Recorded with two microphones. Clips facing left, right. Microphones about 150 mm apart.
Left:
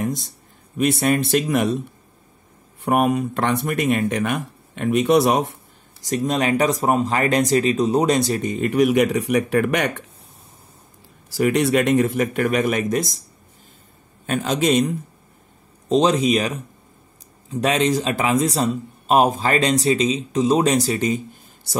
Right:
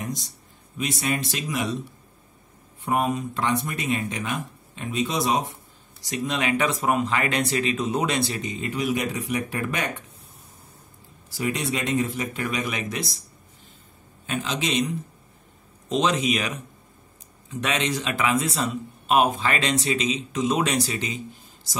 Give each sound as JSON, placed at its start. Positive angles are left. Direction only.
{"t": 0.0, "sound": "a sound", "side_deg": 50}
{"t": 0.7, "sound": "speech", "side_deg": 55}
{"t": 2.8, "sound": "speech", "side_deg": 65}
{"t": 6.0, "sound": "speech", "side_deg": 45}
{"t": 11.2, "sound": "speech", "side_deg": 65}
{"t": 14.2, "sound": "speech", "side_deg": 50}
{"t": 15.9, "sound": "a man's voice", "side_deg": 35}